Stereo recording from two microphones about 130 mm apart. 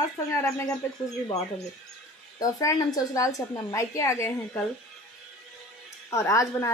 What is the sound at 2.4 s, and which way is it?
A woman's voice, 25° left (ahead or behind).